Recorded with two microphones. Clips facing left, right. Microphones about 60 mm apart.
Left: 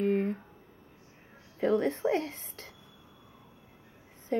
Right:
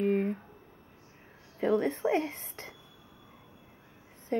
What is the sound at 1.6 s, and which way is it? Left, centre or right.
Speech, centre.